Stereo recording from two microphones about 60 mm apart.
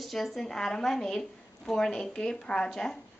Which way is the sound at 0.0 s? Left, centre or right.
Centre.